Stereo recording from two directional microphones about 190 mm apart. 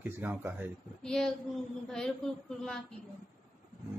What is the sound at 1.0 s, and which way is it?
A woman's voice, 5° left (ahead or behind).